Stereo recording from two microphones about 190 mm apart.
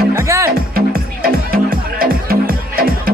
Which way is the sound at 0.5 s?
50° right (ahead or behind).